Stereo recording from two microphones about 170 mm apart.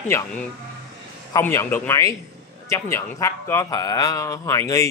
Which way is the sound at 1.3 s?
15° left (ahead or behind).